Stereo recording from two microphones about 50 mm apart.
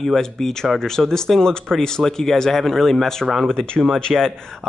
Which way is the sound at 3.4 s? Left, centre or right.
Centre.